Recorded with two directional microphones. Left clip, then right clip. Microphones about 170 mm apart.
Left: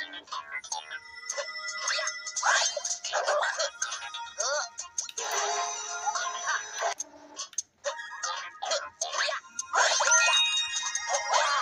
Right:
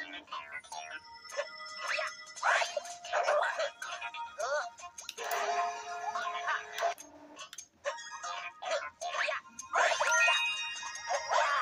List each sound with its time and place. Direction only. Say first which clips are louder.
0.0 s music: left 5 dB; 30° left (ahead or behind)